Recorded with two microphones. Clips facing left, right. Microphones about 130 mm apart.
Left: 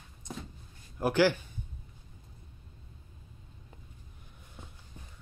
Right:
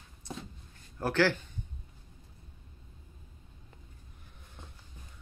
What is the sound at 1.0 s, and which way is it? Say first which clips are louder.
Speech: left 2 dB; 15° left (ahead or behind).